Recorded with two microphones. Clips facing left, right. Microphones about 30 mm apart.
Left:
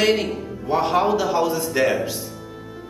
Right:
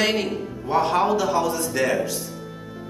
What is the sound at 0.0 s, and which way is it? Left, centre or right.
A man's voice, centre.